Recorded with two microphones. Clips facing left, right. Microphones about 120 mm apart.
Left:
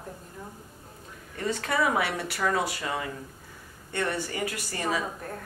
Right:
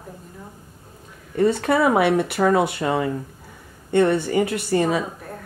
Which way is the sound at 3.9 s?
25° right (ahead or behind).